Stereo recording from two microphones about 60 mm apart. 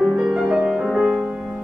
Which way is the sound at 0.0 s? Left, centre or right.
Centre.